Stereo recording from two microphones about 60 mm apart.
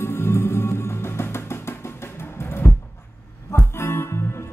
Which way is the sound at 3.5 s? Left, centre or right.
Left.